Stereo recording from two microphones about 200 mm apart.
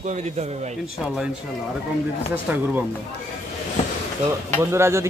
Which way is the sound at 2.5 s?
10° right (ahead or behind).